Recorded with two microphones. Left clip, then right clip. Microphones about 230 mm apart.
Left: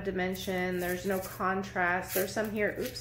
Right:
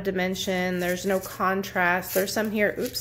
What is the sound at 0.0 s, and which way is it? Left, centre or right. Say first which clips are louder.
A woman's voice: right 6 dB; right.